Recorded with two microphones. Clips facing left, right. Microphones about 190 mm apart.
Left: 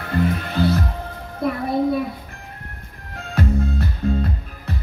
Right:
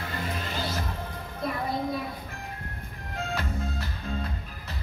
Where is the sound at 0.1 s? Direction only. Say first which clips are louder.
Left 14 dB; 60° left (ahead or behind).